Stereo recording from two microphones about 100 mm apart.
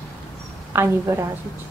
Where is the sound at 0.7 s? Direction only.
25° right (ahead or behind).